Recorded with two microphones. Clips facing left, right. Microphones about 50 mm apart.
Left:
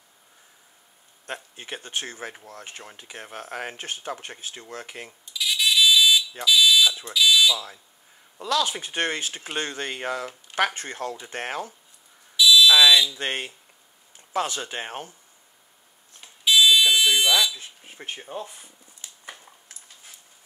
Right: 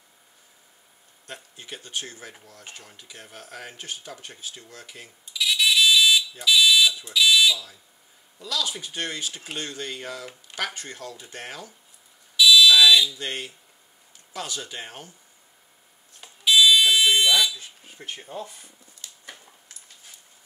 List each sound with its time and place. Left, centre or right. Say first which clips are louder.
1.2 s speech: left 5 dB; left
5.2 s a sound: right 2 dB; centre
6.4 s fire alarm: even; centre
7.1 s speech: even; centre
7.5 s speech: left 4 dB; left
12.4 s fire alarm: even; centre
13.1 s speech: left 3 dB; left
16.2 s buzzer: right 1 dB; centre
17.1 s speech: right 1 dB; centre
17.6 s a sound: left 1 dB; left